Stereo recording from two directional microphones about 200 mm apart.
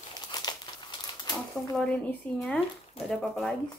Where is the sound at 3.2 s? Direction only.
5° left (ahead or behind).